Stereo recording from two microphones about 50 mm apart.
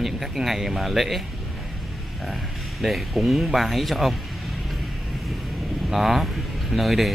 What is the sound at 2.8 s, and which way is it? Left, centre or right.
Speech, centre.